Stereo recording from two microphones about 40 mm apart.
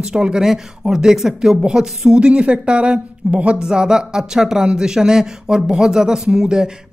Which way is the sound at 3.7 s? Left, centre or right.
Centre.